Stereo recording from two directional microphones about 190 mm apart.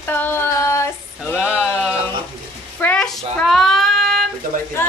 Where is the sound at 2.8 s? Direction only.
5° left (ahead or behind).